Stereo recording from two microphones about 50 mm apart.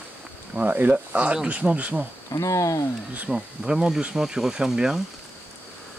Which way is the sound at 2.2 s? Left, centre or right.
Left.